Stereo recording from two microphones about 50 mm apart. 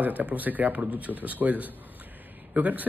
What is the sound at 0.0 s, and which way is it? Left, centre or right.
A man's voice, right.